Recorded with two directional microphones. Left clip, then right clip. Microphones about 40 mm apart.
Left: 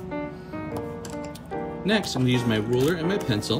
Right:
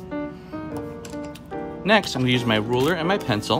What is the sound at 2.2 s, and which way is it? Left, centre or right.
Speech, left.